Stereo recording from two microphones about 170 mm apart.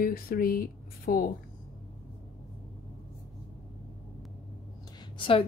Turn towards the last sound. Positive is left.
turn(degrees=30)  # may be behind; listen again after turning